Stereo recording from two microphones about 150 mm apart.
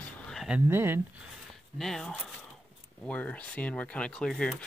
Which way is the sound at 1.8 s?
5° left (ahead or behind).